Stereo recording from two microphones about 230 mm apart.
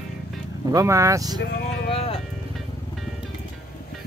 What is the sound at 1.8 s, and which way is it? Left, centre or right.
Music, left.